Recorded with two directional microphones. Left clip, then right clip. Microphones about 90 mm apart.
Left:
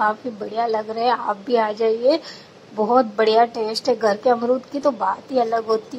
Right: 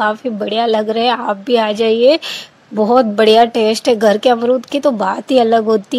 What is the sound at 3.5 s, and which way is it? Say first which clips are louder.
A woman's voice: right 8 dB; 60° right (ahead or behind).